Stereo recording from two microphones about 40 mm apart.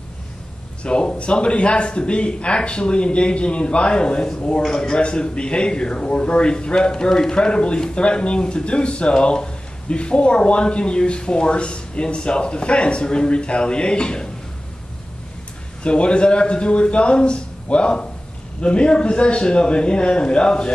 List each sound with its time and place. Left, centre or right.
0.8 s a man's voice: left
4.6 s a man's voice: centre
5.0 s a man's voice: left
15.8 s a man's voice: left